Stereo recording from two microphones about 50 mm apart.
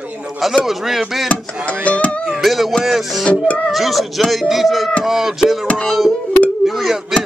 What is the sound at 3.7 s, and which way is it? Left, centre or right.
Speech, centre.